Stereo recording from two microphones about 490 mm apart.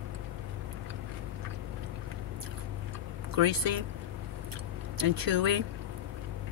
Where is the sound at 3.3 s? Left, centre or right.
Right.